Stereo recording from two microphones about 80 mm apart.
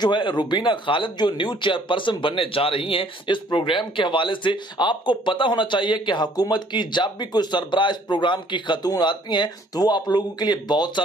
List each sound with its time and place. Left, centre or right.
0.0 s a man's voice: left
8.8 s speech: left